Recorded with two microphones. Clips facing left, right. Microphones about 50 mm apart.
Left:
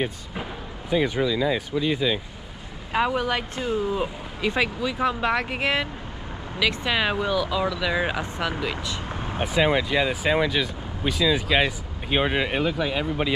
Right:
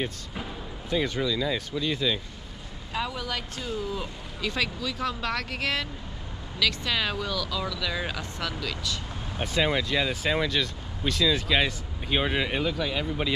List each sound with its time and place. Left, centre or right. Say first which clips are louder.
0.0 s speech: left 4 dB; centre
2.9 s speech: left 8 dB; left
9.1 s vehicle: left 7 dB; left
9.4 s speech: left 4 dB; centre